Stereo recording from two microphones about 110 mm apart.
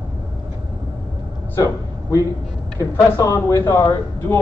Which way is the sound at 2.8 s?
30° left (ahead or behind).